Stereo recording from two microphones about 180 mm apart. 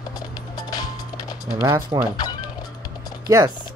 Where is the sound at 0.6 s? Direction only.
20° left (ahead or behind).